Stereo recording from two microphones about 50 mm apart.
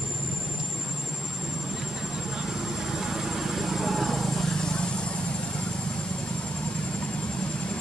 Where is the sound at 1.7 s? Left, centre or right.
Centre.